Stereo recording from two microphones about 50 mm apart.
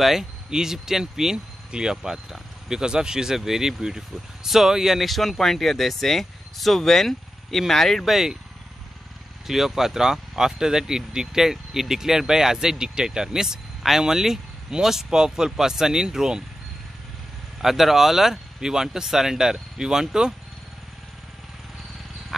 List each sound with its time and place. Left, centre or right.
0.0 s speech: centre
8.0 s speech: centre
9.5 s speech: centre
17.6 s speech: centre